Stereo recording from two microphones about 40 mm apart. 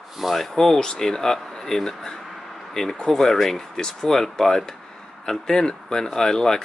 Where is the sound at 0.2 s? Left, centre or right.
Centre.